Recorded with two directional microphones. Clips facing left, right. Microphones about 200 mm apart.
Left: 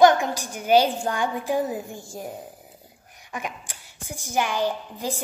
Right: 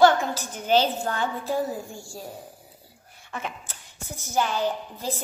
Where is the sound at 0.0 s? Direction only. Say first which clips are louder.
Left 2 dB; 15° left (ahead or behind).